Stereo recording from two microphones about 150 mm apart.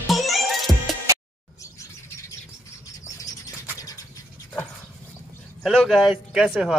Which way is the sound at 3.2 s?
25° left (ahead or behind).